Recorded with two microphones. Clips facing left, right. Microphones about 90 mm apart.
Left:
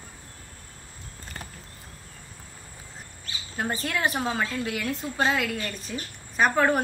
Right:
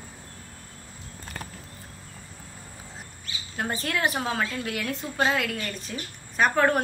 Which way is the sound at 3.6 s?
Centre (ahead or behind).